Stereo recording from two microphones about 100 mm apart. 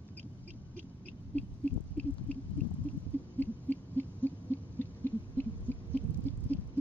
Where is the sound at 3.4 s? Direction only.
20° left (ahead or behind).